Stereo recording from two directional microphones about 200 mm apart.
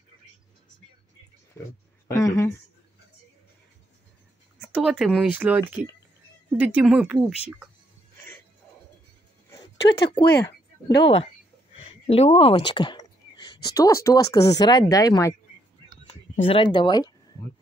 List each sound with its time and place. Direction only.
2.0 s speech: 15° left (ahead or behind)
4.6 s speech: 5° right (ahead or behind)
9.8 s speech: 55° left (ahead or behind)
10.4 s speech: 20° left (ahead or behind)